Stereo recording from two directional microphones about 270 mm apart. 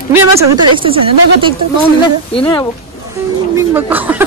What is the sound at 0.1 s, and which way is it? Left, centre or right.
Speech, centre.